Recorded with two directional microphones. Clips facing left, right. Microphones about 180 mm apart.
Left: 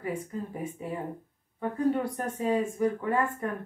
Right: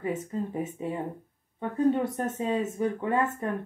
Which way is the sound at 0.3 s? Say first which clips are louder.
Right 4 dB; 25° right (ahead or behind).